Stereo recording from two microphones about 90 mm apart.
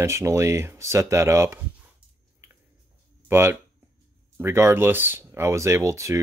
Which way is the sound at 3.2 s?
25° right (ahead or behind).